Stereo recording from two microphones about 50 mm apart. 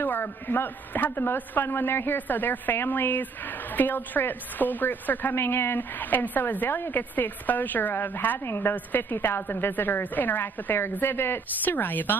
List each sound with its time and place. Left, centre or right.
0.0 s a woman's voice: left
5.3 s a woman's voice: left
8.5 s a woman's voice: left
8.7 s a woman's voice: left